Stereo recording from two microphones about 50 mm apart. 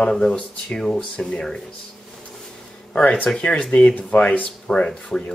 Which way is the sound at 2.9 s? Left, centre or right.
Left.